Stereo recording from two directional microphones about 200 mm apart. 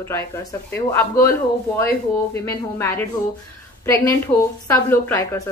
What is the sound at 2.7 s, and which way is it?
Speech, 10° left (ahead or behind).